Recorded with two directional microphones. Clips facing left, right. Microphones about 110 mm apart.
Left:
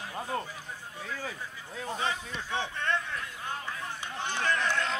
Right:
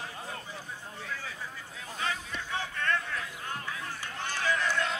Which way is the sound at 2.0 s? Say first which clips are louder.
Right 1 dB; 20° left (ahead or behind).